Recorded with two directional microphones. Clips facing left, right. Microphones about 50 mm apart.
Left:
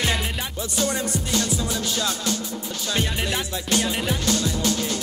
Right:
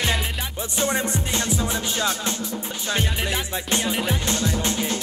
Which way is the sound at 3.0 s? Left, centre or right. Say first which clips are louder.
Left 1 dB; centre.